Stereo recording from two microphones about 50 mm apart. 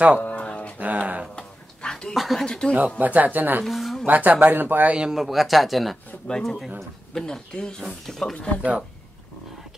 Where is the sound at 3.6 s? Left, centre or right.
Centre.